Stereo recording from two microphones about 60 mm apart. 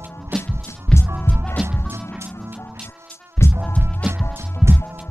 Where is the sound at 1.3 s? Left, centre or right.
Left.